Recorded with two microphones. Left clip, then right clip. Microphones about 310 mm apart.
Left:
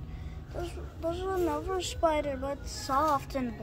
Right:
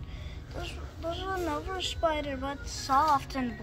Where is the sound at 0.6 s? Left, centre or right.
Centre.